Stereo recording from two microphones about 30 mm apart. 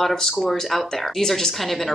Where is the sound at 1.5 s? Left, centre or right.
Centre.